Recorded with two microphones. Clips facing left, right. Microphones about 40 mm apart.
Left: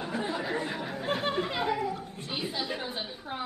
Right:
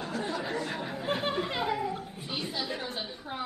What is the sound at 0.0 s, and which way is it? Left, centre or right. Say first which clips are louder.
Chatter: left 1 dB; centre.